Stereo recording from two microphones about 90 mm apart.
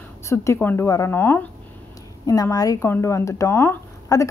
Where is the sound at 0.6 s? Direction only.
25° left (ahead or behind).